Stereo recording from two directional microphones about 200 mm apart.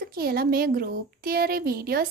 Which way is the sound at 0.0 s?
50° right (ahead or behind).